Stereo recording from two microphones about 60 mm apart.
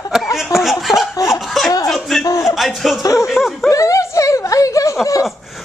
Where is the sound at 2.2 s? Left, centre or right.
Left.